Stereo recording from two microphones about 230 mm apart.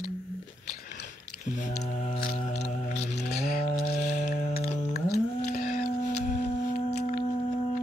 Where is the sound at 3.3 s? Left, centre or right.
Left.